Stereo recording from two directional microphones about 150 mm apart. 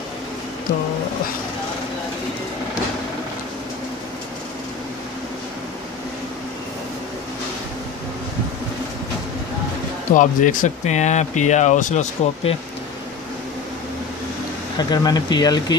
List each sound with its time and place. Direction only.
10.1 s speech: 60° left (ahead or behind)
14.8 s speech: 25° left (ahead or behind)